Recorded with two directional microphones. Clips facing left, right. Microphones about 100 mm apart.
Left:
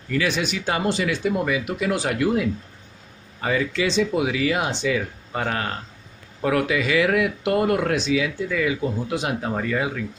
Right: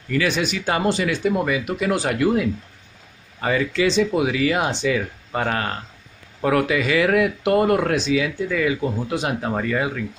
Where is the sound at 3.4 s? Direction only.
55° right (ahead or behind).